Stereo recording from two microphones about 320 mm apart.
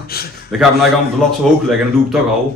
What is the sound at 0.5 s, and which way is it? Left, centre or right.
Speech, centre.